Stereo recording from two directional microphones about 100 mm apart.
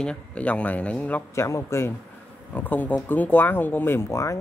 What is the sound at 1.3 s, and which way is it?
Speech, 30° left (ahead or behind).